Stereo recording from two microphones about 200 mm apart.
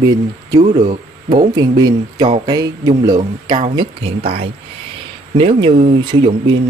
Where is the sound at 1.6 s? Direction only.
20° right (ahead or behind).